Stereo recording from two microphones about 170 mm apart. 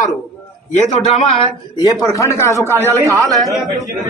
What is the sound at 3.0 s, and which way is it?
Speech, 20° right (ahead or behind).